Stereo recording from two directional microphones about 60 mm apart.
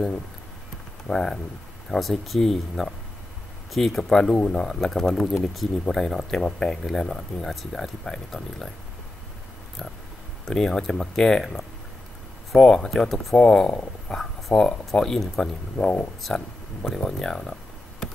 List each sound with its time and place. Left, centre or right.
1.0 s speech: centre
10.4 s speech: centre
13.4 s speech: centre